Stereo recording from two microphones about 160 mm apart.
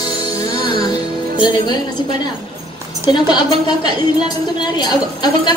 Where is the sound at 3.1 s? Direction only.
25° left (ahead or behind).